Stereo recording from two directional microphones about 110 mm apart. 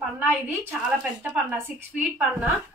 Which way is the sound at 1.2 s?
10° right (ahead or behind).